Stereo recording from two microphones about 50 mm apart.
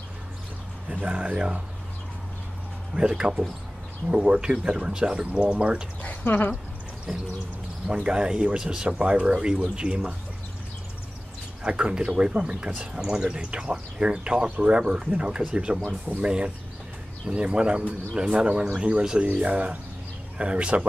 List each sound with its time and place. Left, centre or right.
0.8 s speech: right
2.9 s speech: centre
6.2 s speech: left
7.1 s a sound: centre
7.9 s speech: centre
11.6 s speech: centre